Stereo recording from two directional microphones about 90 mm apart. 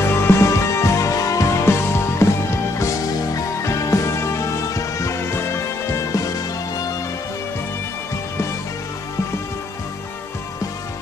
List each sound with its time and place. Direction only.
0.1 s music: 25° left (ahead or behind)